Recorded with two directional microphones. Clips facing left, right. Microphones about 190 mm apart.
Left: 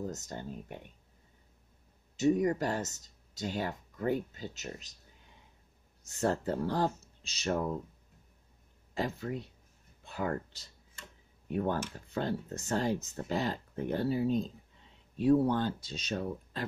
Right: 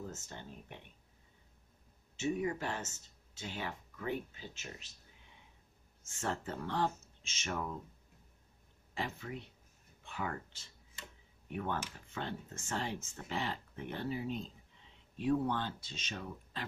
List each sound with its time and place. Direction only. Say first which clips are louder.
0.0 s speech: left 7 dB; 40° left (ahead or behind)
2.1 s speech: left 8 dB; 40° left (ahead or behind)
6.0 s speech: left 8 dB; 40° left (ahead or behind)
8.9 s speech: left 7 dB; 40° left (ahead or behind)